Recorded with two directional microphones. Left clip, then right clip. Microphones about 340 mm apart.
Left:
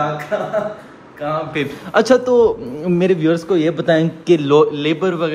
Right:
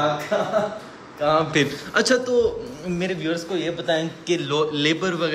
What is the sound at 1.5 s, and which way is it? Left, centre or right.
A man's voice, centre.